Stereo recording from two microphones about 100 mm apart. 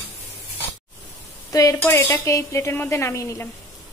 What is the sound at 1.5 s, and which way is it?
Speech, 35° left (ahead or behind).